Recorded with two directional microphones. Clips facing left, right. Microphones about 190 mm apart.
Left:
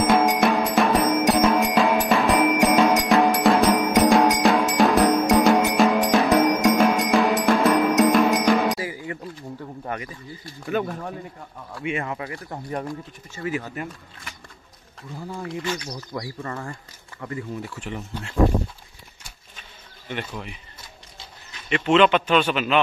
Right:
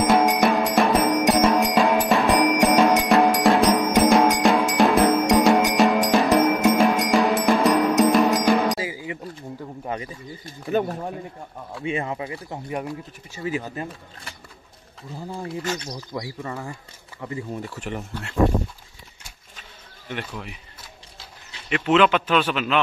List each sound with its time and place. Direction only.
0.0 s music: centre (ahead or behind)
8.7 s music: 15° right (ahead or behind)
9.8 s a sound: 30° right (ahead or behind)
10.7 s speech: 35° right (ahead or behind)
12.4 s speech: 10° right (ahead or behind)
13.4 s speech: 20° right (ahead or behind)
15.3 s speech: 30° right (ahead or behind)
16.0 s speech: 10° right (ahead or behind)
17.7 s speech: 45° right (ahead or behind)
20.1 s a man's voice: centre (ahead or behind)
21.6 s a man's voice: 5° right (ahead or behind)